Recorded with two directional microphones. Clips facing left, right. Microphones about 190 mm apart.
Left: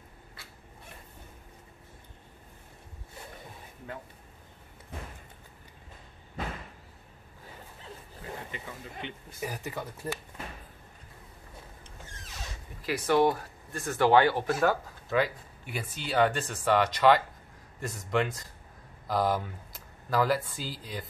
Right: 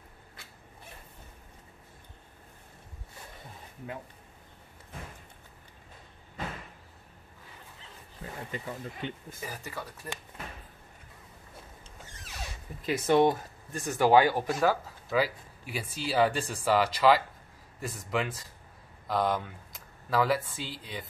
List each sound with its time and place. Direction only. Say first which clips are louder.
8.5 s speech: right 4 dB; 40° right (ahead or behind)
9.4 s speech: left 5 dB; 15° left (ahead or behind)
12.8 s speech: right 1 dB; 25° right (ahead or behind); by 21.0 s centre (ahead or behind)